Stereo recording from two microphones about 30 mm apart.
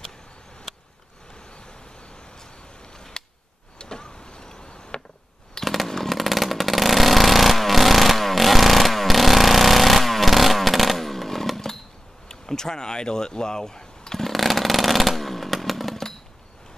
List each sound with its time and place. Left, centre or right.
3.0 s a sound: left
3.7 s vehicle: left
5.6 s chainsaw: centre
6.0 s motorcycle: centre
12.3 s speech: left
14.2 s chainsaw: centre